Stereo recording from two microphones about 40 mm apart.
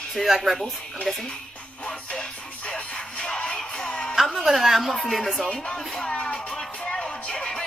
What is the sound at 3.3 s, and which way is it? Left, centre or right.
Music, left.